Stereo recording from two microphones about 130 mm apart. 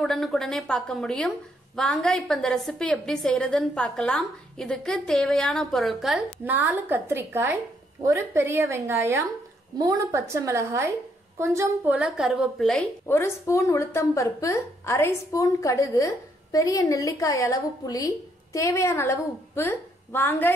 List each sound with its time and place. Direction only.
0.0 s a woman's voice: centre (ahead or behind)
6.4 s a woman's voice: 15° right (ahead or behind); by 20.5 s 15° left (ahead or behind)